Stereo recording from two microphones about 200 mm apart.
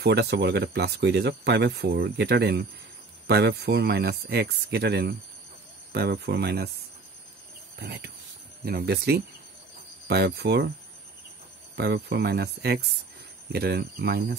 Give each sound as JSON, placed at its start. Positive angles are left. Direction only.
{"t": 0.0, "sound": "speech", "side_deg": -55}
{"t": 7.8, "sound": "speech", "side_deg": -55}
{"t": 11.7, "sound": "speech", "side_deg": -55}